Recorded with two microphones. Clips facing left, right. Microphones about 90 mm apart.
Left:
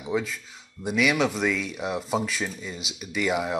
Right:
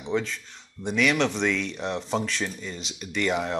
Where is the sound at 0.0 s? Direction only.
5° left (ahead or behind).